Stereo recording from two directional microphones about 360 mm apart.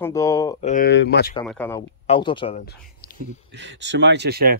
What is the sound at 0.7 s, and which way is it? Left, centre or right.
Speech, left.